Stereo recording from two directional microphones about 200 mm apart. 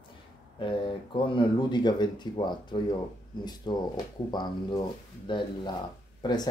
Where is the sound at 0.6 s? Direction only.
25° left (ahead or behind).